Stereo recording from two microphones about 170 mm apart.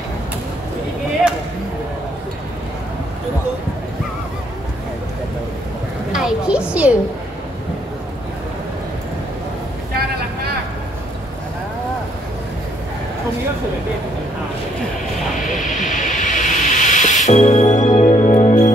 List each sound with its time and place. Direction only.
6.1 s a sound: 5° right (ahead or behind)
6.7 s a woman's voice: 5° right (ahead or behind)
15.6 s music: 50° left (ahead or behind)